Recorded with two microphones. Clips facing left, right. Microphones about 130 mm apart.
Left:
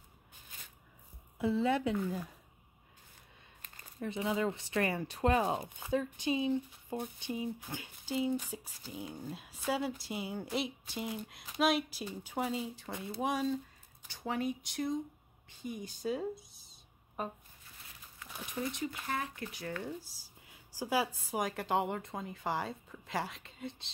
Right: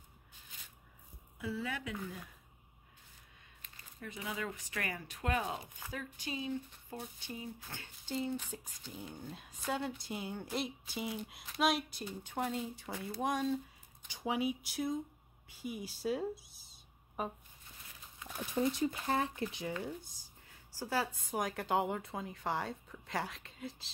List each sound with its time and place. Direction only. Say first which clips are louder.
1.4 s speech: left 9 dB; 25° left (ahead or behind)
4.0 s speech: left 8 dB; 25° left (ahead or behind); by 13.6 s centre (ahead or behind)
14.0 s speech: even; 10° right (ahead or behind)
18.4 s speech: right 5 dB; 30° right (ahead or behind)
20.4 s a sound: left 4 dB; 15° left (ahead or behind)
21.4 s speech: left 1 dB; centre (ahead or behind)